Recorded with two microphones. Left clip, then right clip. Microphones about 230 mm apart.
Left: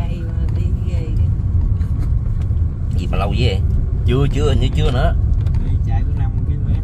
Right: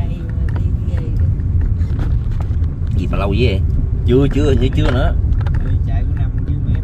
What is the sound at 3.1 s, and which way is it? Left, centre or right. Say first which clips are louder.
Speech: right 3 dB; centre.